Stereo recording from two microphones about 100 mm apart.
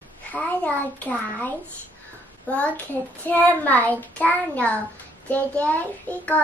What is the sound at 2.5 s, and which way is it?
Child singing, 15° left (ahead or behind).